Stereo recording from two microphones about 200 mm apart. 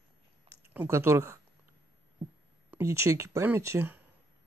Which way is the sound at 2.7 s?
15° right (ahead or behind).